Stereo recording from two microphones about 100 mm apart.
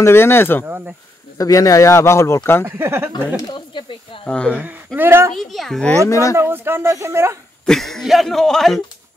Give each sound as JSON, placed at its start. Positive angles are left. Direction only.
{"t": 0.0, "sound": "speech", "side_deg": 25}
{"t": 0.7, "sound": "speech", "side_deg": -20}
{"t": 1.4, "sound": "speech", "side_deg": 35}
{"t": 2.6, "sound": "speech", "side_deg": -25}
{"t": 3.3, "sound": "speech", "side_deg": 45}
{"t": 4.3, "sound": "speech", "side_deg": 10}
{"t": 4.6, "sound": "speech", "side_deg": -15}
{"t": 5.3, "sound": "speech", "side_deg": 0}
{"t": 6.0, "sound": "speech", "side_deg": 30}
{"t": 6.3, "sound": "speech", "side_deg": -20}
{"t": 7.6, "sound": "speech", "side_deg": 5}